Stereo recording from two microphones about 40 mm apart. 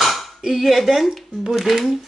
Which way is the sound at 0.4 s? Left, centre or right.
Centre.